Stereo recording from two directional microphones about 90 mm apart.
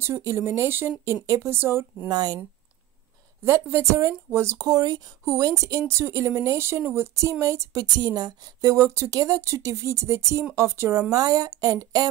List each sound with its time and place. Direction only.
0.0 s speech: 30° right (ahead or behind)
2.0 s speech: 45° right (ahead or behind)
3.4 s speech: 30° right (ahead or behind)
4.6 s speech: 45° right (ahead or behind)
7.8 s speech: 50° right (ahead or behind)